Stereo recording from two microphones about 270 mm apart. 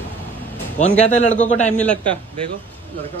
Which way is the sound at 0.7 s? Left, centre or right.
Left.